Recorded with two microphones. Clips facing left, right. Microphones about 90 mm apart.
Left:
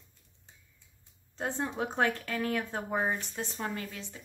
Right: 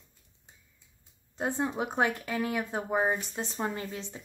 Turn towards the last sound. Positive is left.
turn(degrees=-25)  # may be behind; listen again after turning